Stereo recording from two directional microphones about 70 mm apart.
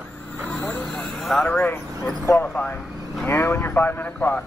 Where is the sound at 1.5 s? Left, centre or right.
Left.